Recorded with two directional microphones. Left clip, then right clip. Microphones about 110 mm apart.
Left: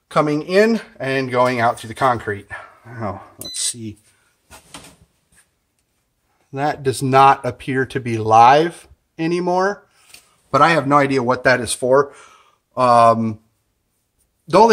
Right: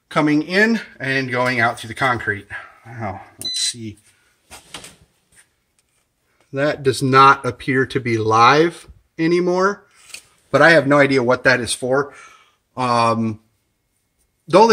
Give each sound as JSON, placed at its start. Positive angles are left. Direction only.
{"t": 0.1, "sound": "speech", "side_deg": 25}
{"t": 3.0, "sound": "speech", "side_deg": 35}
{"t": 6.8, "sound": "speech", "side_deg": 5}